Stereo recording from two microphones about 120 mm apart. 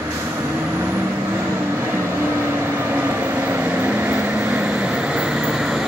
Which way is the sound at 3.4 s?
15° right (ahead or behind).